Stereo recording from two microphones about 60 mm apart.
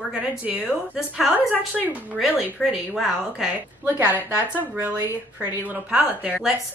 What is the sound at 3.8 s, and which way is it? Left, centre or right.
Speech, right.